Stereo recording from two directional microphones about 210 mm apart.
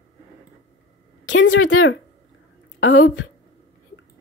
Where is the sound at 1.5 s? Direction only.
65° left (ahead or behind).